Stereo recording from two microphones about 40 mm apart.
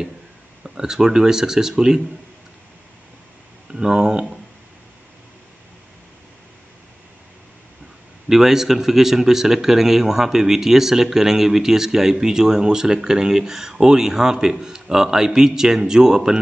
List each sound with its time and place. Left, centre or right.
0.7 s a man's voice: centre
3.7 s a man's voice: centre
8.3 s a man's voice: centre